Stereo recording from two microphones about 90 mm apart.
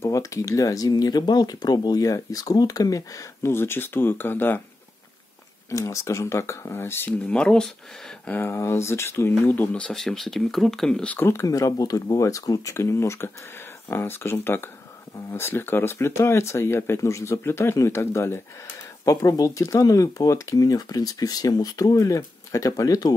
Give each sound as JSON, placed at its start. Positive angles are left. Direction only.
{"t": 0.0, "sound": "speech", "side_deg": 35}
{"t": 3.5, "sound": "speech", "side_deg": 25}
{"t": 5.7, "sound": "speech", "side_deg": 35}
{"t": 8.3, "sound": "speech", "side_deg": 25}
{"t": 9.8, "sound": "speech", "side_deg": 5}
{"t": 11.1, "sound": "speech", "side_deg": 25}
{"t": 11.4, "sound": "speech", "side_deg": 40}
{"t": 19.0, "sound": "speech", "side_deg": 40}